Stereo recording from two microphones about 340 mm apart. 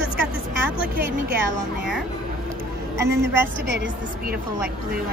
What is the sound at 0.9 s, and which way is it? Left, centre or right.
Speech, right.